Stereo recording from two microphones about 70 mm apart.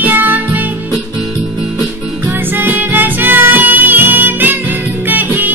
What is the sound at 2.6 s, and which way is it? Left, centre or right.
Music, right.